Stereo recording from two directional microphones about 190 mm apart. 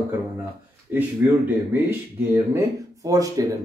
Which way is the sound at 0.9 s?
10° right (ahead or behind).